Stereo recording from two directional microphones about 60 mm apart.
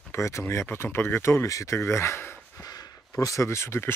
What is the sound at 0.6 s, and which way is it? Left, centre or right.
Speech, left.